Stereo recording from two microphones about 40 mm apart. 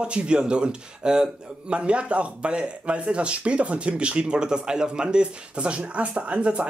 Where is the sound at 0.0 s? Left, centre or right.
Right.